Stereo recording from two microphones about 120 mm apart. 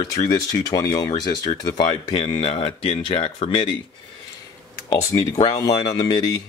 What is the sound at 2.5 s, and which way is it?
Speech, 55° left (ahead or behind).